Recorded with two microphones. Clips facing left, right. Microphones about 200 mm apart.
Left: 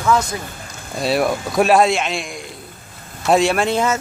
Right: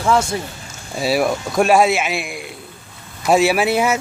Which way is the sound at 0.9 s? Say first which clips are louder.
Even; centre (ahead or behind).